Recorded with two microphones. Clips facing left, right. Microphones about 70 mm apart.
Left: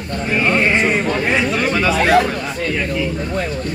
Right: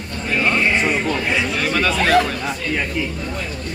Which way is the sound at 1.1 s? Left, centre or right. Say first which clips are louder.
Left 3 dB; left.